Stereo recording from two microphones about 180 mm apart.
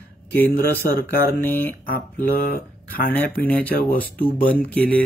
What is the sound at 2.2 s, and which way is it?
Speech, 55° left (ahead or behind).